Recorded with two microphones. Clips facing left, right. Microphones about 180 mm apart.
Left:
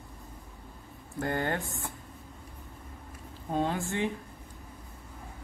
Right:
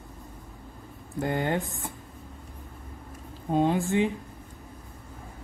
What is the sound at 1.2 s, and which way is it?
Speech, 15° right (ahead or behind).